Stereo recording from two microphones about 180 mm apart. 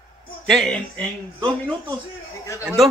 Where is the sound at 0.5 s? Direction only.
5° left (ahead or behind).